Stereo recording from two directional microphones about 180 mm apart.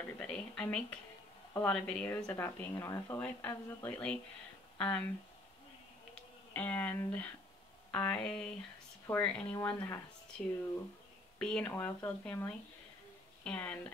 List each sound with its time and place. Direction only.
0.0 s a woman's voice: 5° left (ahead or behind)
6.5 s speech: 10° left (ahead or behind)
11.3 s a woman's voice: 5° left (ahead or behind)